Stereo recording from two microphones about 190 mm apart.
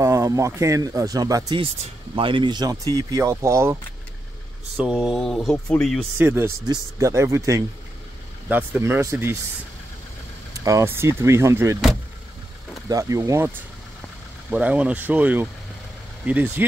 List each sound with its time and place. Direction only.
0.0 s speech: 15° right (ahead or behind)
4.7 s speech: 5° right (ahead or behind)
6.1 s speech: 10° right (ahead or behind)
10.5 s speech: 15° right (ahead or behind)
12.8 s speech: 20° right (ahead or behind)